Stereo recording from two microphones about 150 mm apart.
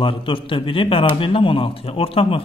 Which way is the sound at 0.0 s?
35° left (ahead or behind).